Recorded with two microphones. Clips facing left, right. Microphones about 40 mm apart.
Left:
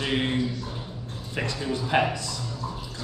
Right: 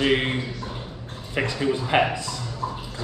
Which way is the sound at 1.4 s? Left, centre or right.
Right.